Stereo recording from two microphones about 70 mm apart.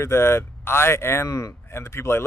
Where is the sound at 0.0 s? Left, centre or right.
Left.